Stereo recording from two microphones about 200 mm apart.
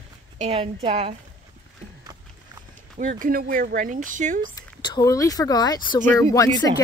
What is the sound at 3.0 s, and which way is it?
Speech, 40° right (ahead or behind).